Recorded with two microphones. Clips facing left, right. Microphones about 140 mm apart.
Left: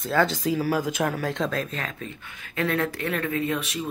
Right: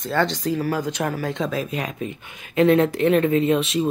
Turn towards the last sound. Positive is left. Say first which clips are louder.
# right 8 dB
turn(degrees=-25)  # may be behind; listen again after turning